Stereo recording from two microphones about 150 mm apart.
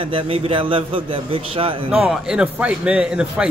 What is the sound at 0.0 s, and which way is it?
A man's voice, 35° right (ahead or behind).